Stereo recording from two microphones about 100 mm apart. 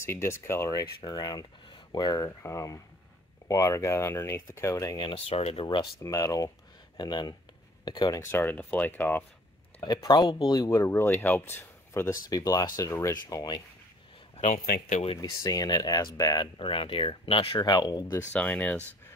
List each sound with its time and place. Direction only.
0.0 s speech: 25° left (ahead or behind); by 2.3 s 40° left (ahead or behind)
2.4 s speech: 30° left (ahead or behind)
4.9 s speech: 65° left (ahead or behind); by 5.7 s 80° left
6.0 s speech: 35° left (ahead or behind)
7.0 s speech: 45° left (ahead or behind)
8.2 s speech: 20° left (ahead or behind)
10.0 s speech: 45° left (ahead or behind); by 12.1 s 25° left (ahead or behind)
12.1 s speech: 35° left (ahead or behind)
15.1 s speech: 35° left (ahead or behind)
16.5 s speech: 60° left (ahead or behind)
17.6 s speech: 45° left (ahead or behind)
18.3 s speech: 10° left (ahead or behind)